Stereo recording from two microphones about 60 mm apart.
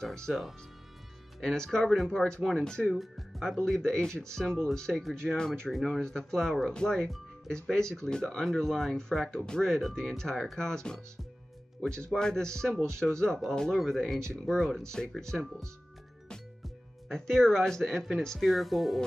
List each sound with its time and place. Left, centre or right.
0.0 s speech: centre
1.4 s speech: centre
2.9 s speech: centre
17.1 s speech: centre